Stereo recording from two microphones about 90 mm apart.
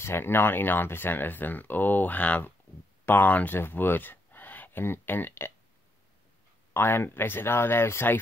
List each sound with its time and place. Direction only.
0.0 s speech: 25° left (ahead or behind)
6.7 s speech: 25° left (ahead or behind)